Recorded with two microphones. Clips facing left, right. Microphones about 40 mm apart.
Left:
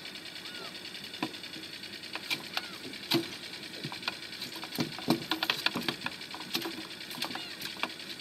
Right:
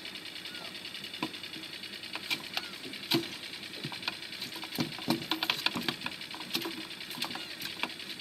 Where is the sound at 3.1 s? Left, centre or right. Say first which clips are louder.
Left 1 dB; centre.